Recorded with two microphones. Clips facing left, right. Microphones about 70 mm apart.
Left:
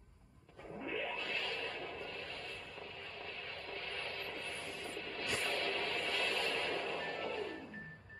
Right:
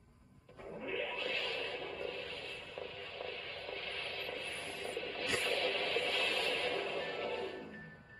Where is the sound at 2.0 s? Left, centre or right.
Centre.